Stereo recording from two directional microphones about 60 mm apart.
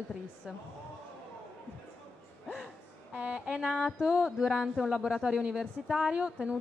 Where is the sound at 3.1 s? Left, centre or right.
Centre.